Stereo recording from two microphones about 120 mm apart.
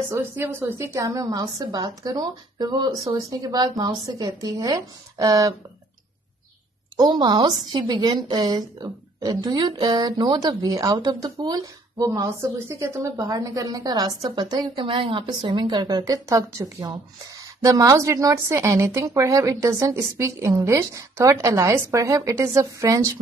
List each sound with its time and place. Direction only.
0.1 s a woman's voice: 20° right (ahead or behind)
7.0 s a woman's voice: 40° right (ahead or behind)